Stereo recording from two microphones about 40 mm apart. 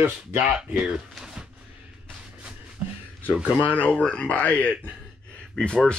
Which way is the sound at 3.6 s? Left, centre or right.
Left.